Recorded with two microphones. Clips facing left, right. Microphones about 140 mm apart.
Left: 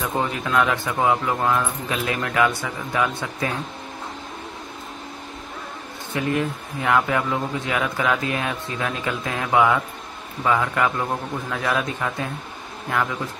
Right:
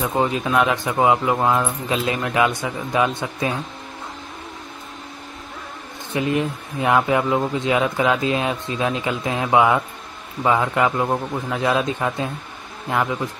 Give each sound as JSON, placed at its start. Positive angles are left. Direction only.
{"t": 0.2, "sound": "speech", "side_deg": -20}
{"t": 6.1, "sound": "speech", "side_deg": -20}